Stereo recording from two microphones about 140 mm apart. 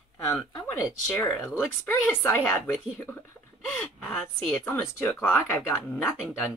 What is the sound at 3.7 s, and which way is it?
Speech, 10° left (ahead or behind).